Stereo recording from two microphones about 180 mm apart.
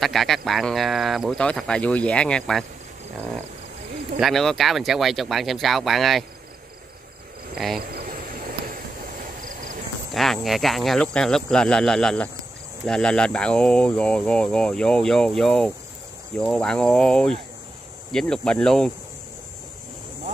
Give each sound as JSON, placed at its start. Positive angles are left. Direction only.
{"t": 0.0, "sound": "speech", "side_deg": 0}
{"t": 4.2, "sound": "speech", "side_deg": 0}
{"t": 7.5, "sound": "speech", "side_deg": 0}
{"t": 7.8, "sound": "insect", "side_deg": -60}
{"t": 10.1, "sound": "speech", "side_deg": 0}